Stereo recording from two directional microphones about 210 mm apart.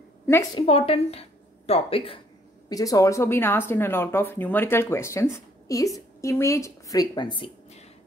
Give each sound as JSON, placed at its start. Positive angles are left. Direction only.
{"t": 0.3, "sound": "speech", "side_deg": 15}
{"t": 0.7, "sound": "a woman's voice", "side_deg": 25}
{"t": 2.7, "sound": "speech", "side_deg": 15}